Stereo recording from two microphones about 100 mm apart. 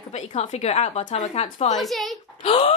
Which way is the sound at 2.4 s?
65° left (ahead or behind).